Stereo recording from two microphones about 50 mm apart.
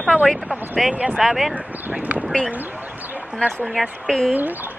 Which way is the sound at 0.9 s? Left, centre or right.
Right.